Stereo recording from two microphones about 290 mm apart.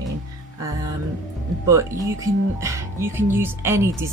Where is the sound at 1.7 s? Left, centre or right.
Centre.